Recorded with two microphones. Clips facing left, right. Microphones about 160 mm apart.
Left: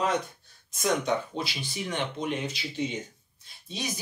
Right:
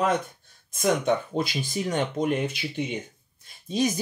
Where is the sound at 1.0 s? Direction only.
50° right (ahead or behind).